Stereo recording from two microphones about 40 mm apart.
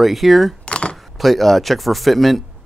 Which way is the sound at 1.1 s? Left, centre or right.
Centre.